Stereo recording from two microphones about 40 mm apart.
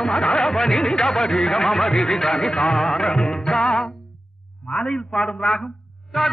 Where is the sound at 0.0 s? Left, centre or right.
Centre.